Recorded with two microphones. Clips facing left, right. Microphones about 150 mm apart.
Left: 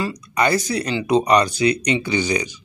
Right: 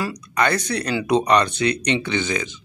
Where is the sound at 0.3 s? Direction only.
10° left (ahead or behind).